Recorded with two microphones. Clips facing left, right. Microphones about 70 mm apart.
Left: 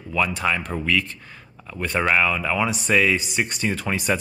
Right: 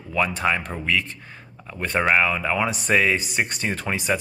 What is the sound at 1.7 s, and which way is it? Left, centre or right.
A man's voice, right.